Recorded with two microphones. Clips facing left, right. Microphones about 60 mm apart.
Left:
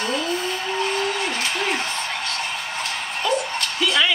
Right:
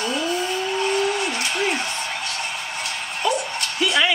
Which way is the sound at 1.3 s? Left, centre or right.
Left.